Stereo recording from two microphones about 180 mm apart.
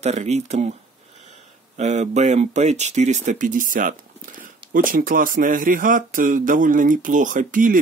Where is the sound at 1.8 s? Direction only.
40° right (ahead or behind).